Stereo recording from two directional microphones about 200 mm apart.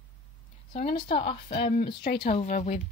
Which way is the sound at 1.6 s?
50° left (ahead or behind).